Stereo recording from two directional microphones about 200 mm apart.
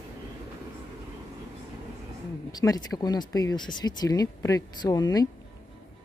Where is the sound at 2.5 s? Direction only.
20° left (ahead or behind).